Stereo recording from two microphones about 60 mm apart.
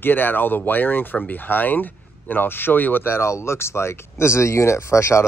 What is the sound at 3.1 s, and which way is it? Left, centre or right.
Speech, left.